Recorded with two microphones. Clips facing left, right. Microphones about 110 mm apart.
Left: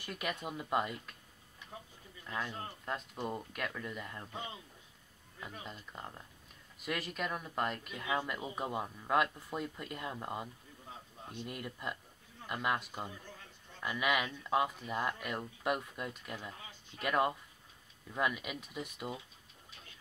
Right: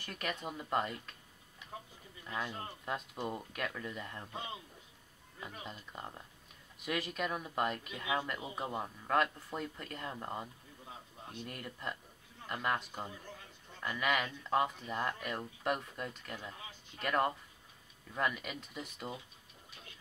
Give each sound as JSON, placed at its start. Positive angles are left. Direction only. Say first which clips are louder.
{"t": 0.0, "sound": "speech", "louder": "left 1 dB", "side_deg": 10}
{"t": 2.2, "sound": "speech", "louder": "even", "side_deg": -5}